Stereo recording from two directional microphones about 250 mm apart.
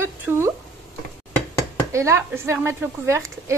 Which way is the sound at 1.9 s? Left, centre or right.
Centre.